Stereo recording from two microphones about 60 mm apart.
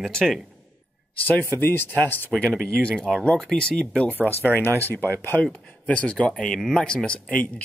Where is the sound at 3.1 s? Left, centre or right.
Centre.